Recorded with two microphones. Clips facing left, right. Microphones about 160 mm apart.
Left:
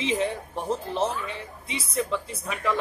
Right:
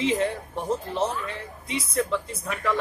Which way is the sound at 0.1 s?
10° left (ahead or behind).